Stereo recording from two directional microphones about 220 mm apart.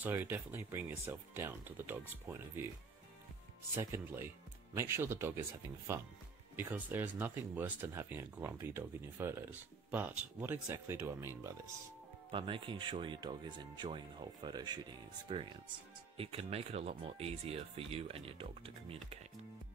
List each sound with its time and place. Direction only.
0.0 s speech: 10° right (ahead or behind)
3.7 s speech: 10° right (ahead or behind)
6.5 s speech: 10° right (ahead or behind)
12.3 s speech: 25° right (ahead or behind)